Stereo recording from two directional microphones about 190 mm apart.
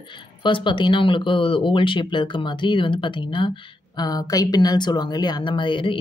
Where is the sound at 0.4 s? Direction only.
25° left (ahead or behind).